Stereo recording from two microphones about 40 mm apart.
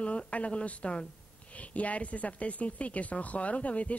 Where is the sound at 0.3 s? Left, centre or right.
Left.